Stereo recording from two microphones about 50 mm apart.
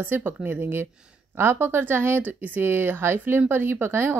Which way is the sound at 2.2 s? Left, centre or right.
Right.